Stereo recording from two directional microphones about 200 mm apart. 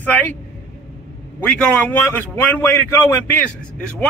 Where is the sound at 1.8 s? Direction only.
10° left (ahead or behind).